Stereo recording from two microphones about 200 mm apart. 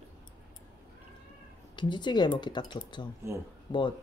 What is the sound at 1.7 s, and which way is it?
Speech, 20° left (ahead or behind).